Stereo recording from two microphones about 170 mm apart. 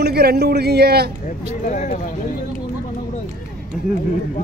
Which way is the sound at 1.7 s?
45° left (ahead or behind).